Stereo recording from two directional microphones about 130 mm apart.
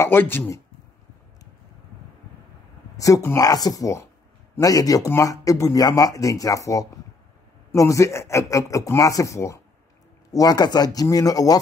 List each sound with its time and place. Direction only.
0.0 s speech: 15° left (ahead or behind)
3.0 s speech: 25° left (ahead or behind)